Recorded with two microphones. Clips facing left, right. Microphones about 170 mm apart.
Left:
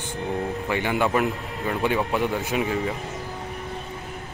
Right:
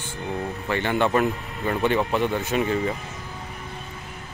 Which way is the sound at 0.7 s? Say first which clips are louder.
Right 2 dB; 10° left (ahead or behind).